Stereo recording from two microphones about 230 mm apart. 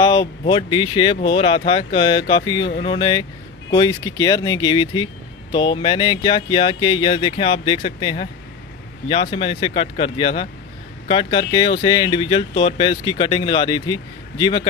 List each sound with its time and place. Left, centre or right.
0.0 s speech: centre